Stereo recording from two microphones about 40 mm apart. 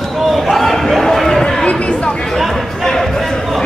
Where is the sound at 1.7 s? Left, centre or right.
Left.